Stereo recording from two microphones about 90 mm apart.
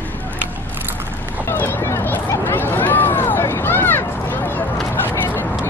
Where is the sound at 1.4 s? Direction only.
25° left (ahead or behind).